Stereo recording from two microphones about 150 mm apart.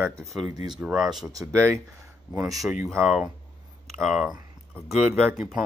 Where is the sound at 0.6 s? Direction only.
5° right (ahead or behind).